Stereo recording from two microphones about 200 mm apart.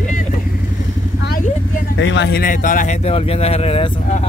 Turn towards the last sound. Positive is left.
turn(degrees=30)  # may be behind; listen again after turning